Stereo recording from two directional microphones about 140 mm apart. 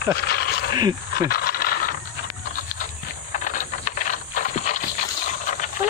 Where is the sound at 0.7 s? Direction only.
30° right (ahead or behind).